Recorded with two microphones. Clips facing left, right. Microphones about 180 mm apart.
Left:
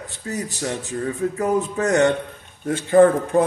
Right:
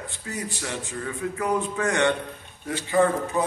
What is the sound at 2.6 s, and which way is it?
Speech, 55° left (ahead or behind).